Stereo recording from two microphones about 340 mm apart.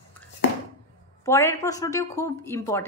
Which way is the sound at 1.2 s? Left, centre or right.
Centre.